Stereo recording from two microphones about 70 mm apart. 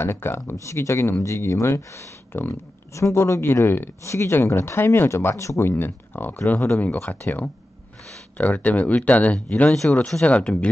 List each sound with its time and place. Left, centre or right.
0.0 s speech: left
5.7 s speech: left
9.7 s speech: centre